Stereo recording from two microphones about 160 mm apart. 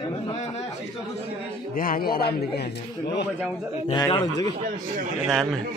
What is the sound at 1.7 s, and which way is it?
A man's voice, 60° left (ahead or behind).